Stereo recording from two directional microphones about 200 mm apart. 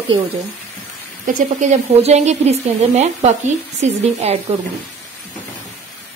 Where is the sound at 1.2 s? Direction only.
35° right (ahead or behind).